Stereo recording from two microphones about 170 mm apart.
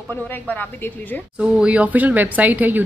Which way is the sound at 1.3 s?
5° right (ahead or behind).